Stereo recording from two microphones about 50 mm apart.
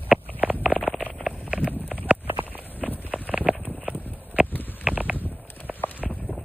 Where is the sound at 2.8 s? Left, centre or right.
Left.